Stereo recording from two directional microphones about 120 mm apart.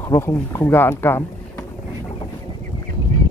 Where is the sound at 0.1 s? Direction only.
20° left (ahead or behind).